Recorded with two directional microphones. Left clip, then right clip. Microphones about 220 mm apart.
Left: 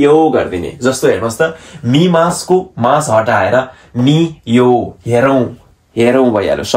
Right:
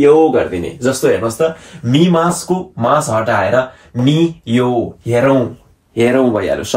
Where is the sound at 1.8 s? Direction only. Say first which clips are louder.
Left 2 dB; 15° left (ahead or behind).